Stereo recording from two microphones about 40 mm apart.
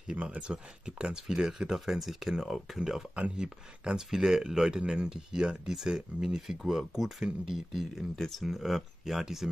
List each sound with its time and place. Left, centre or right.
0.1 s speech: right
0.4 s speech: right
3.2 s speech: right; by 4.8 s centre
4.8 s speech: right
6.4 s speech: centre
8.2 s speech: centre
8.5 s speech: centre